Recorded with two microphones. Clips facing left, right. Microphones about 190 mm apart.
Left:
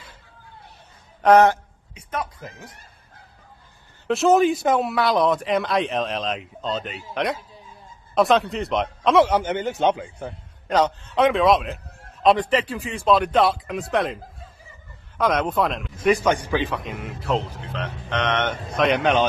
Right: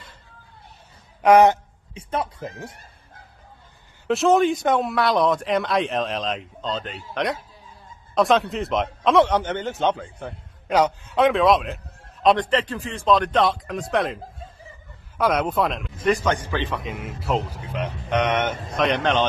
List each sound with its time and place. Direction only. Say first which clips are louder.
1.2 s a man's voice: even; 15° right (ahead or behind)
2.0 s speech: right 3 dB; 30° right (ahead or behind)
4.1 s speech: left 1 dB; centre (ahead or behind)
10.7 s a man's voice: right 1 dB; 10° right (ahead or behind)
11.1 s speech: even; centre (ahead or behind)
16.1 s speech: left 2 dB; 10° left (ahead or behind); by 18.6 s 10° right (ahead or behind)
18.8 s speech: left 2 dB; 5° left (ahead or behind)